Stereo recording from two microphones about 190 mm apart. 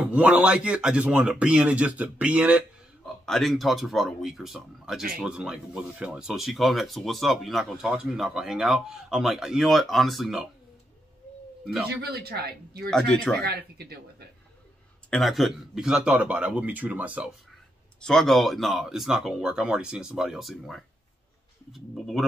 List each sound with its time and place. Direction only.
0.0 s a man's voice: 5° right (ahead or behind)
11.9 s speech: 55° right (ahead or behind)
12.9 s speech: 5° left (ahead or behind)
13.5 s speech: 55° right (ahead or behind)
15.0 s a man's voice: centre (ahead or behind)
18.0 s speech: 5° left (ahead or behind)